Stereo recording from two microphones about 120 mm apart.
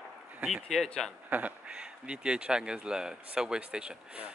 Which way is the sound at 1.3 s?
10° right (ahead or behind).